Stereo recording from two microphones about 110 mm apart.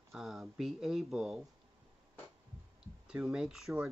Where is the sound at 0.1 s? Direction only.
Centre (ahead or behind).